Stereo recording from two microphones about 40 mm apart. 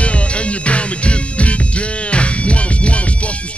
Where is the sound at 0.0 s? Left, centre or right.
Left.